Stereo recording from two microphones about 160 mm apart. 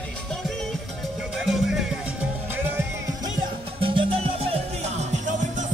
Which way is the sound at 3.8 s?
35° right (ahead or behind).